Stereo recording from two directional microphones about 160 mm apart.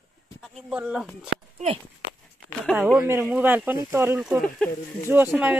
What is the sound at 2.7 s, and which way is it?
Speech, 5° right (ahead or behind).